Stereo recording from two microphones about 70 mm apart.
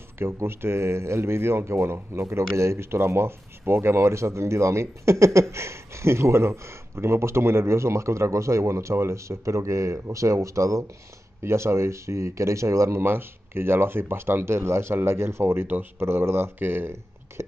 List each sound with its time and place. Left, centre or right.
0.2 s speech: right